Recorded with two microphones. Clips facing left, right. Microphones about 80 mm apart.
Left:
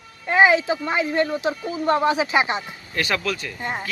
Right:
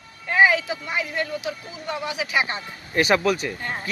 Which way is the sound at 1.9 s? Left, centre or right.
Left.